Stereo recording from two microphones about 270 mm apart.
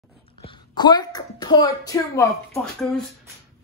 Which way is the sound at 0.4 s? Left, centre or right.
Centre.